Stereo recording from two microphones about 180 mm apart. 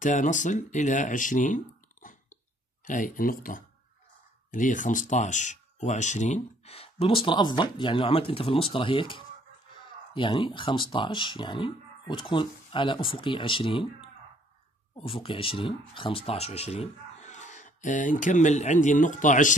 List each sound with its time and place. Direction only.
0.0 s speech: 45° left (ahead or behind)